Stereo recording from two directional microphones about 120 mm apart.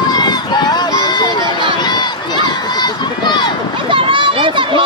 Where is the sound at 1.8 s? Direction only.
35° left (ahead or behind).